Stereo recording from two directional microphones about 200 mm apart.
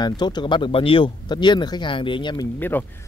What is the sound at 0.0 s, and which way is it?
Speech, 20° left (ahead or behind).